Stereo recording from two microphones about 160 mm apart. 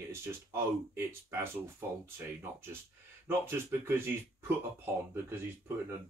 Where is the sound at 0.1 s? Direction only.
15° right (ahead or behind).